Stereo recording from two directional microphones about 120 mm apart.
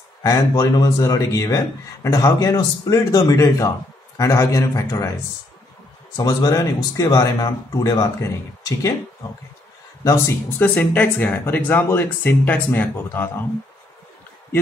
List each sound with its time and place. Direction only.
0.2 s speech: 30° left (ahead or behind)
6.1 s speech: 30° left (ahead or behind)
10.6 s speech: 15° left (ahead or behind)